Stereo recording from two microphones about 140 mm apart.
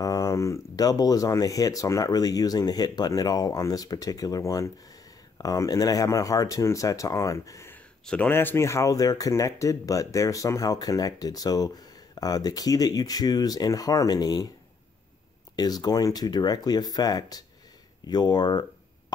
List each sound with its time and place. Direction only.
0.0 s speech: 25° left (ahead or behind)
8.0 s speech: 10° left (ahead or behind); by 14.5 s 25° left (ahead or behind)
15.5 s speech: 30° left (ahead or behind)